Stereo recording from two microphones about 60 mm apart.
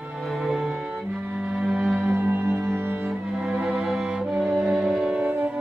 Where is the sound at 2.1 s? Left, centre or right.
Right.